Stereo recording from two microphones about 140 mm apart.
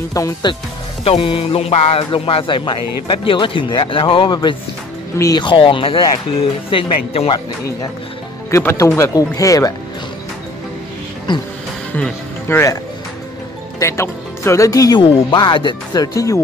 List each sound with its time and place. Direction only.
0.1 s speech: 25° left (ahead or behind)
1.0 s speech: 40° left (ahead or behind)
7.3 s speech: 25° left (ahead or behind)
11.3 s speech: 30° left (ahead or behind)
11.9 s speech: 15° left (ahead or behind)
13.7 s speech: 20° left (ahead or behind)